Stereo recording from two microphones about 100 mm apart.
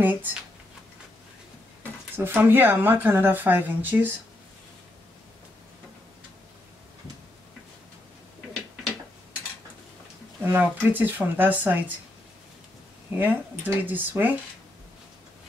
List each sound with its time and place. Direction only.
0.0 s speech: 20° right (ahead or behind)
2.1 s speech: 20° right (ahead or behind)
10.4 s speech: 20° right (ahead or behind)
13.2 s speech: 15° right (ahead or behind)